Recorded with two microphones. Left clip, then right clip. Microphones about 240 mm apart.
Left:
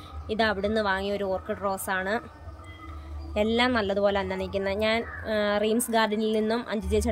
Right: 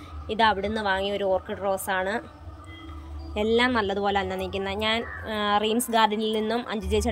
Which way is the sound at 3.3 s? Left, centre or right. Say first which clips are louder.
Right 1 dB; centre.